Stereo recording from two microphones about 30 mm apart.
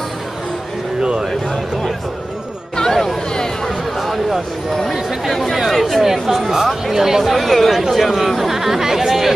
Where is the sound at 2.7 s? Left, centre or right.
Centre.